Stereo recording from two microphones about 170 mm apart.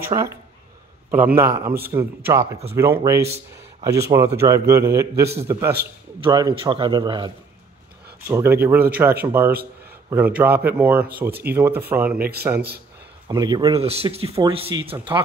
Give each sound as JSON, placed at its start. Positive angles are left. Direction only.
{"t": 0.1, "sound": "speech", "side_deg": -20}
{"t": 6.2, "sound": "a man's voice", "side_deg": -25}
{"t": 8.3, "sound": "speech", "side_deg": -15}
{"t": 12.2, "sound": "speech", "side_deg": -65}
{"t": 13.3, "sound": "a man's voice", "side_deg": -25}
{"t": 13.7, "sound": "speech", "side_deg": -35}